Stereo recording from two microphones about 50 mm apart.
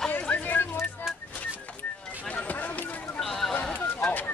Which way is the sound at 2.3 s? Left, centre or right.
Left.